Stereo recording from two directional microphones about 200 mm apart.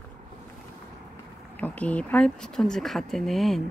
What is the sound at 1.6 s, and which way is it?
Speech, 5° left (ahead or behind).